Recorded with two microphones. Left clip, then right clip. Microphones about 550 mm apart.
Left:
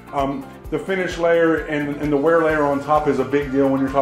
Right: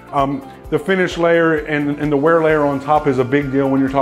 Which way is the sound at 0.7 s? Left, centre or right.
Right.